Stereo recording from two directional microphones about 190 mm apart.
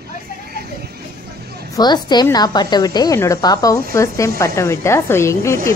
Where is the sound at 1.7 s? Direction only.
20° left (ahead or behind).